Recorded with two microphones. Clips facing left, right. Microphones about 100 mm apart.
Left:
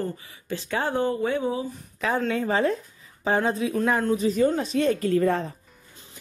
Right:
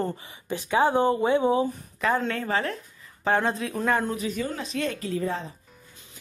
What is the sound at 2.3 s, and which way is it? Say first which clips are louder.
Speech: left 4 dB; 15° left (ahead or behind).